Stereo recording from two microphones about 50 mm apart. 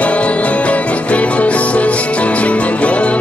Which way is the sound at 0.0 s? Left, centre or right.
Left.